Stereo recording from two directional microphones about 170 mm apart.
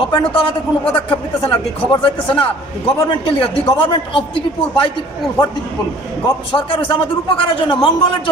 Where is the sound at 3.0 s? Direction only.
30° left (ahead or behind).